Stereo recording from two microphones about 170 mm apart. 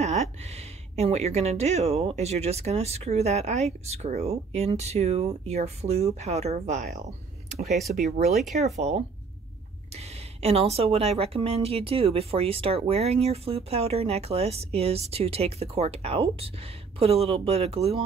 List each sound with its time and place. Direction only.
0.0 s a sound: 40° right (ahead or behind)
0.9 s speech: 40° right (ahead or behind)
8.0 s speech: centre (ahead or behind)
8.6 s speech: 40° right (ahead or behind)